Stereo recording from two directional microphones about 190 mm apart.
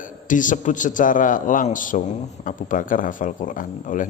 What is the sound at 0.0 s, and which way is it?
A man's voice, 45° left (ahead or behind).